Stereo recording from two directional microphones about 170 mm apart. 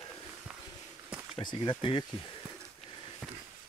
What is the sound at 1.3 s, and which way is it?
Speech, 30° left (ahead or behind).